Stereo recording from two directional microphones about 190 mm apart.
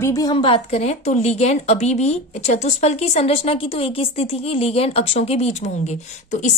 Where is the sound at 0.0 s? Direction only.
20° left (ahead or behind).